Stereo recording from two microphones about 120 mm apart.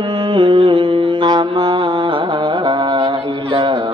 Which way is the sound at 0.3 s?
45° right (ahead or behind).